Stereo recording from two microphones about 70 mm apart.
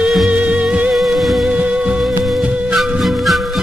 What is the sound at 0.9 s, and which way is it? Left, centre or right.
Music, centre.